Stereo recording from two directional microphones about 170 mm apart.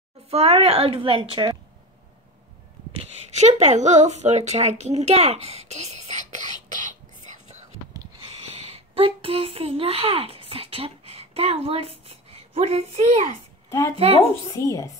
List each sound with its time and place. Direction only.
0.3 s a woman's voice: 35° right (ahead or behind)
3.0 s a woman's voice: 40° right (ahead or behind)
13.7 s speech: 20° left (ahead or behind)
13.9 s a woman's voice: 35° right (ahead or behind)
14.5 s a woman's voice: 20° left (ahead or behind)